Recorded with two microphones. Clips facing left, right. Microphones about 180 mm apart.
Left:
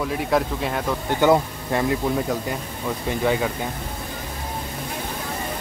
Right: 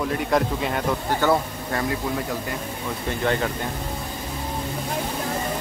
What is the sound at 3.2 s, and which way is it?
Speech, 5° left (ahead or behind).